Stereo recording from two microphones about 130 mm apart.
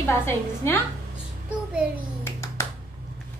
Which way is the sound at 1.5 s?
10° right (ahead or behind).